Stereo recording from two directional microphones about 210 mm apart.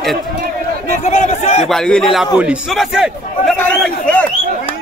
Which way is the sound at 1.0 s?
30° left (ahead or behind).